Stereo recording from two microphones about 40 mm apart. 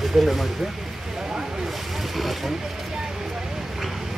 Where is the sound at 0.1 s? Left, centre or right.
Centre.